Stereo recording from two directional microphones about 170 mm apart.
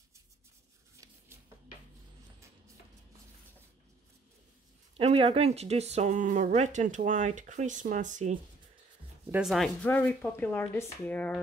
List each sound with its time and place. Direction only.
0.9 s a sound: 15° right (ahead or behind)
4.9 s speech: 35° right (ahead or behind)
9.3 s speech: centre (ahead or behind)